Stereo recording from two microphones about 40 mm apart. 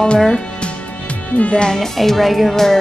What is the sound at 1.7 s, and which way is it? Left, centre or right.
Speech, centre.